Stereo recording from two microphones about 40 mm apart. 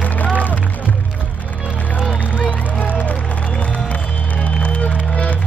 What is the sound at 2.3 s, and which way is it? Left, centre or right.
Music, left.